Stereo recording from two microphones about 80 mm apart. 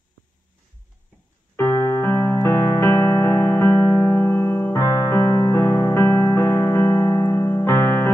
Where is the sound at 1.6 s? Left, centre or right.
Left.